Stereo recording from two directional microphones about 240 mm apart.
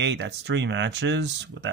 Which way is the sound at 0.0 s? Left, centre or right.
Right.